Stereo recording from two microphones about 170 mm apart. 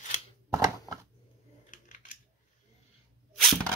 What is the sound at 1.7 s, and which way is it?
Scissors, 50° left (ahead or behind).